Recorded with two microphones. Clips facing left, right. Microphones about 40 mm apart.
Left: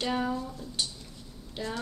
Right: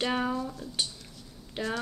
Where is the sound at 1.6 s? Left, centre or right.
Right.